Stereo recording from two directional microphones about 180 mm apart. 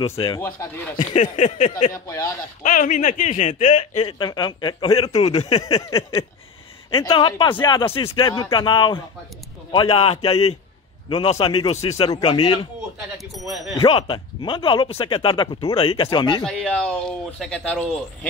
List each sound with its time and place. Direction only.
0.0 s a sound: 30° left (ahead or behind)
1.9 s speech: 15° left (ahead or behind)
2.6 s speech: 45° left (ahead or behind)
4.0 s speech: 25° left (ahead or behind)
9.7 s a sound: 30° left (ahead or behind)
12.1 s speech: 25° left (ahead or behind)
13.8 s speech: 30° left (ahead or behind)
16.4 s speech: 5° left (ahead or behind)